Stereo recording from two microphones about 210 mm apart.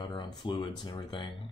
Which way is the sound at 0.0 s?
20° left (ahead or behind).